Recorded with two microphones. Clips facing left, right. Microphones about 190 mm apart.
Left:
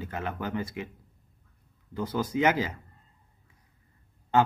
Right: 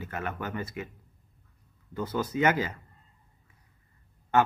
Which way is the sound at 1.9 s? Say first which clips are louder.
Left 1 dB; 10° left (ahead or behind).